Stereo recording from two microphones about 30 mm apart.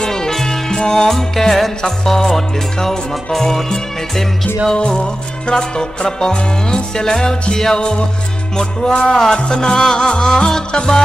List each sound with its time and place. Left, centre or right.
0.0 s music: centre
5.5 s music: left